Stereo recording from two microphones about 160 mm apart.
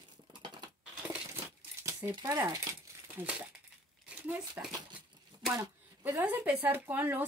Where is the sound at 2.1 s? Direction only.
25° right (ahead or behind); by 4.7 s 5° right (ahead or behind).